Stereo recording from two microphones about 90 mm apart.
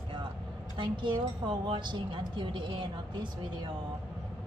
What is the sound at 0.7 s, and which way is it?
A woman's voice, 60° right (ahead or behind).